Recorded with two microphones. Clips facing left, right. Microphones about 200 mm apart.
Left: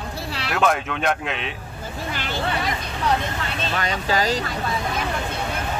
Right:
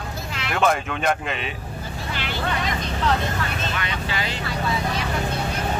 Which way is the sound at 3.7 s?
40° left (ahead or behind).